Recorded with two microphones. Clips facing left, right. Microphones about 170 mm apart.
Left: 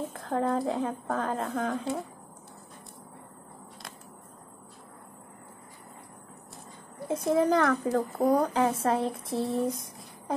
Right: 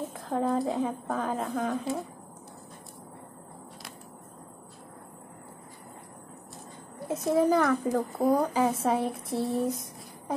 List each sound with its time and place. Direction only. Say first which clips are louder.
0.1 s a woman's voice: right 1 dB; centre (ahead or behind)
7.2 s a woman's voice: right 1 dB; 5° right (ahead or behind)
9.3 s a sound: even; 25° left (ahead or behind)